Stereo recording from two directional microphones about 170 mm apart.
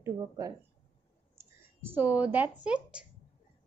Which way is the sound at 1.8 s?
10° right (ahead or behind).